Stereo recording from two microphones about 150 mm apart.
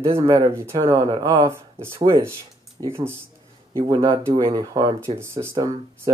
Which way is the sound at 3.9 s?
35° right (ahead or behind).